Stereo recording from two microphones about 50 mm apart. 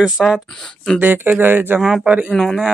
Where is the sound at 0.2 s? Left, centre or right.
Centre.